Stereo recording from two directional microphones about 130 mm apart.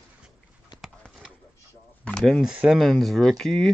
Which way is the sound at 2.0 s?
5° left (ahead or behind).